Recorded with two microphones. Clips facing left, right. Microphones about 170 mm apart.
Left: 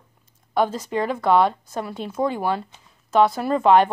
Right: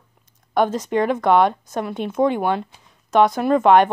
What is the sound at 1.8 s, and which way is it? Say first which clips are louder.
Speech: right 5 dB; 55° right (ahead or behind).